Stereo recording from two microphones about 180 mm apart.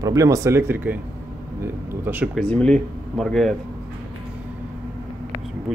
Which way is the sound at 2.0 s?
10° right (ahead or behind).